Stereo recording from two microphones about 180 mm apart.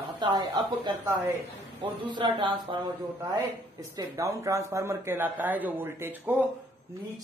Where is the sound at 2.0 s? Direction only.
25° right (ahead or behind).